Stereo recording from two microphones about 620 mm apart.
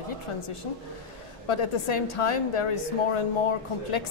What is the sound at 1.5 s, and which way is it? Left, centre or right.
A woman's voice, left.